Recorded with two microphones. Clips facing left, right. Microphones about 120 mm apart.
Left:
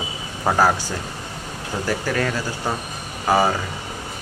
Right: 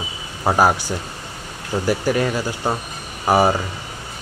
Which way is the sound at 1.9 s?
20° right (ahead or behind).